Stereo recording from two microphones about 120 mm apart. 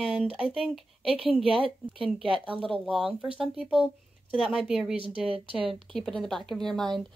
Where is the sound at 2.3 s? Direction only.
45° right (ahead or behind).